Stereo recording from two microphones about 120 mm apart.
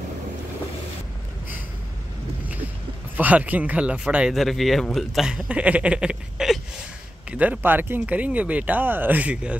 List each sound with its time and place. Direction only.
3.2 s speech: 15° right (ahead or behind)